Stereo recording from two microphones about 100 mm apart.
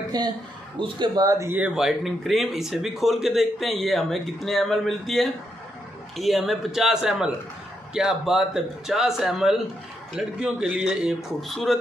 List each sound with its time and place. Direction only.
0.1 s speech: 45° right (ahead or behind)
1.8 s a man's voice: centre (ahead or behind)